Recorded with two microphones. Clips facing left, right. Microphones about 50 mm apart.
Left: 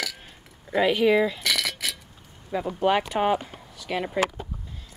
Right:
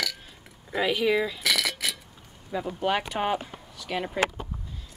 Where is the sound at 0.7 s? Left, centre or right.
Centre.